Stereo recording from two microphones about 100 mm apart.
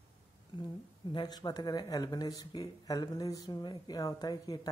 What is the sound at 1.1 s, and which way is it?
Speech, 45° left (ahead or behind).